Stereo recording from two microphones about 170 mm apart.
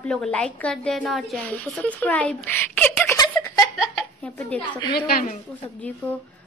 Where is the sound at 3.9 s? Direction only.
5° left (ahead or behind).